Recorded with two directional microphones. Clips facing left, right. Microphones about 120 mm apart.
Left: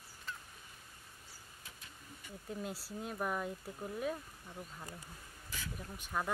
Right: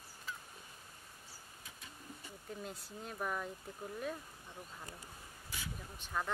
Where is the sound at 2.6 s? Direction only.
5° left (ahead or behind).